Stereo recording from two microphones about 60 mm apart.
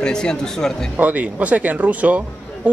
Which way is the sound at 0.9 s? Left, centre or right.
Right.